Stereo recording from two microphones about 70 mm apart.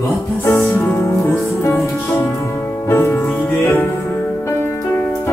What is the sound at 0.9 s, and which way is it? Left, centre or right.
Music, left.